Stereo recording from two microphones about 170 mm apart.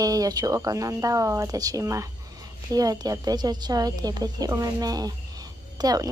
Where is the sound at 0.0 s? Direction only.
20° right (ahead or behind).